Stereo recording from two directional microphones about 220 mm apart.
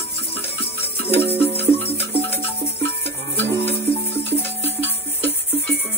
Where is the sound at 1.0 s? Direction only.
10° left (ahead or behind).